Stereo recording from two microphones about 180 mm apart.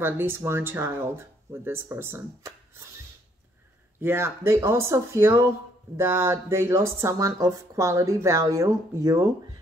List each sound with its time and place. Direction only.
0.0 s speech: 10° right (ahead or behind)
4.0 s speech: 15° right (ahead or behind)